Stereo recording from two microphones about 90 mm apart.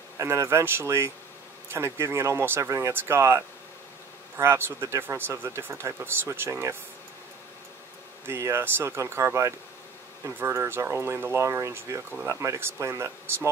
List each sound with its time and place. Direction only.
0.2 s speech: 30° right (ahead or behind)
8.3 s speech: 25° right (ahead or behind)